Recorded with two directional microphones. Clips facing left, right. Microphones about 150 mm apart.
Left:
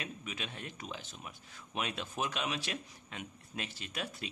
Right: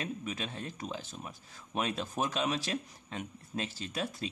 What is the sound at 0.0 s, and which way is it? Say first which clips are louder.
Speech: right 5 dB; 35° right (ahead or behind).